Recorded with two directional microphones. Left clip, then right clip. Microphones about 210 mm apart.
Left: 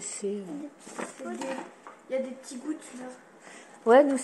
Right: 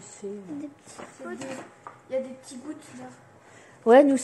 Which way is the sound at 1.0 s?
45° left (ahead or behind).